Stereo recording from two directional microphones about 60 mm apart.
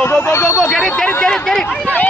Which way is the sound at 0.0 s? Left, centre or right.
Left.